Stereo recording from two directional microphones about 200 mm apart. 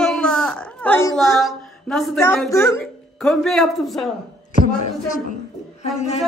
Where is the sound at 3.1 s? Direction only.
Centre (ahead or behind).